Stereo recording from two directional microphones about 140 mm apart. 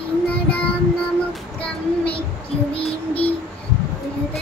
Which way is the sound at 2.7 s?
45° left (ahead or behind).